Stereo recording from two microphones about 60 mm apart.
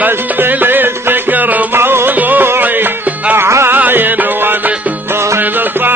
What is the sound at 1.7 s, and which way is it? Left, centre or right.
Music, right.